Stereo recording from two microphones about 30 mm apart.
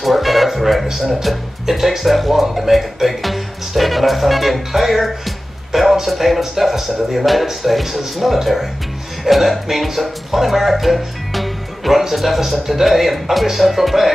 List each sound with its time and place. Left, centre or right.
0.0 s music: centre
0.8 s speech: centre